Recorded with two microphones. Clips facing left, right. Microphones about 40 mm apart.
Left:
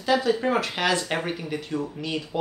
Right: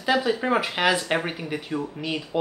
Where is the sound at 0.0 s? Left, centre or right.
Centre.